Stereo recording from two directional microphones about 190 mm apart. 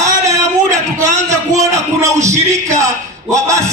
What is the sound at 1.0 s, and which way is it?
A man's voice, 15° right (ahead or behind).